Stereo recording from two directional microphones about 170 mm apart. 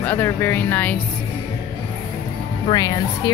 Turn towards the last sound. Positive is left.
turn(degrees=20)  # may be behind; listen again after turning